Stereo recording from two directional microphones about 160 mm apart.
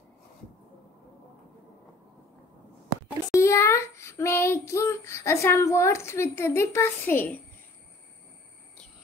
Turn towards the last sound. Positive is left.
turn(degrees=10)  # may be behind; listen again after turning